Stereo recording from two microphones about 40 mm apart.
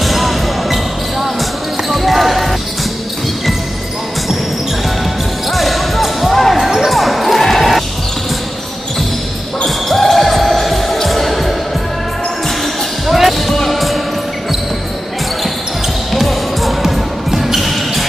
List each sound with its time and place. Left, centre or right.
0.0 s music: centre
1.9 s basketball bounce: centre
5.5 s basketball bounce: centre
9.8 s music: centre
13.0 s music: centre
16.1 s basketball bounce: centre